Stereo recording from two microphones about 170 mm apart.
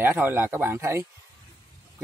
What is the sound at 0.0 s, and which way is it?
Speech, 10° right (ahead or behind).